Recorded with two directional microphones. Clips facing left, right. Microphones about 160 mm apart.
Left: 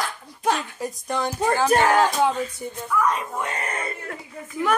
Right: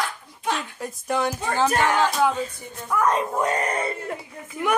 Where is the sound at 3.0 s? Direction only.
40° right (ahead or behind).